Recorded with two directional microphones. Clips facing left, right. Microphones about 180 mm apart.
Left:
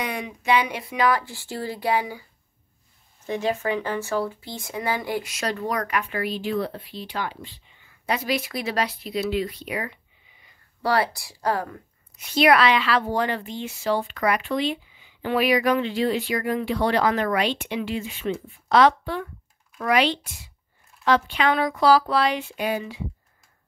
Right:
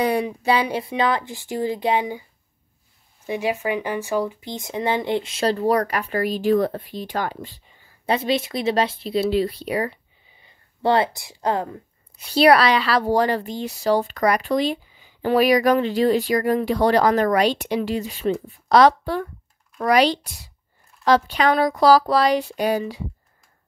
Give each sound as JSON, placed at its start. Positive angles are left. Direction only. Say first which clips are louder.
{"t": 0.0, "sound": "speech", "louder": "right 8 dB", "side_deg": -35}
{"t": 3.3, "sound": "speech", "louder": "right 1 dB", "side_deg": -10}
{"t": 12.2, "sound": "a woman's voice", "louder": "right 3 dB", "side_deg": -35}